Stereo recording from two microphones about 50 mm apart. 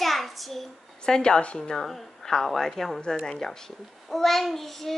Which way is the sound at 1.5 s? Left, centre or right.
Centre.